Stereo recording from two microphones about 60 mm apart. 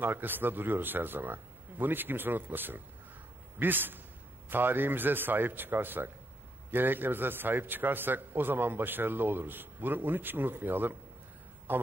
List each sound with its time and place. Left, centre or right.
0.0 s a man's voice: right